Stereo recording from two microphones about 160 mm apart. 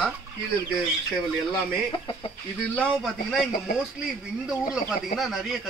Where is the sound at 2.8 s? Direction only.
Centre (ahead or behind).